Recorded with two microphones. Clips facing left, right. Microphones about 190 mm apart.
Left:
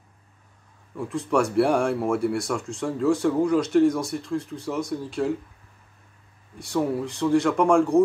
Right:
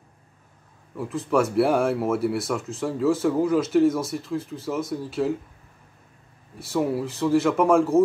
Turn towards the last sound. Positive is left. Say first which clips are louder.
# even
turn(degrees=-5)  # may be behind; listen again after turning